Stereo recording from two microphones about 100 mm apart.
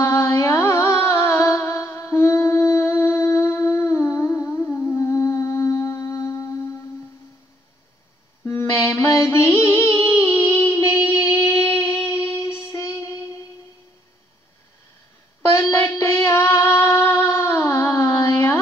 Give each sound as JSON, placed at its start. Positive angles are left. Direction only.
{"t": 0.0, "sound": "music", "side_deg": 30}
{"t": 8.5, "sound": "music", "side_deg": 30}
{"t": 15.5, "sound": "music", "side_deg": 30}